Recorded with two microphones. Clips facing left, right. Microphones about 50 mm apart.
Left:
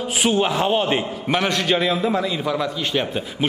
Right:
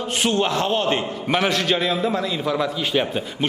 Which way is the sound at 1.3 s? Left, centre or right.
Centre.